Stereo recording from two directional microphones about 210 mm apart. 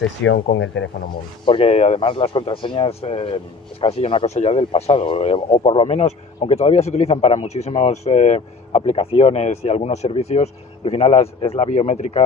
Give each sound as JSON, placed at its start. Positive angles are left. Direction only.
{"t": 0.2, "sound": "speech", "side_deg": 65}
{"t": 1.4, "sound": "speech", "side_deg": 25}